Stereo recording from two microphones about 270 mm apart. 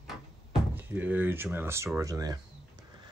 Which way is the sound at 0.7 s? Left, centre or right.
Centre.